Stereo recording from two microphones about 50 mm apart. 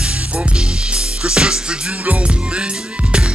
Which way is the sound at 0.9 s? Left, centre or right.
Centre.